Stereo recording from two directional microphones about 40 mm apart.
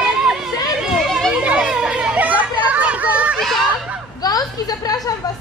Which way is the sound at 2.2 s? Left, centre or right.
Right.